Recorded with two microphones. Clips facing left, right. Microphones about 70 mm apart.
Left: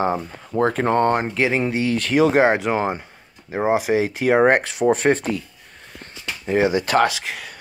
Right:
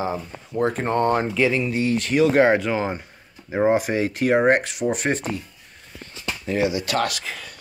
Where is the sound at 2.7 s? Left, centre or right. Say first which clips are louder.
Left 3 dB; left.